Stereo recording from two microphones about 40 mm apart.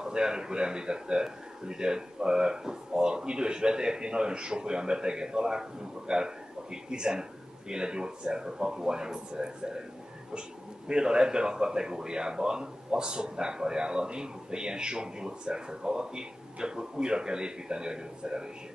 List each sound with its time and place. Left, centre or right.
0.0 s speech: centre
10.9 s speech: right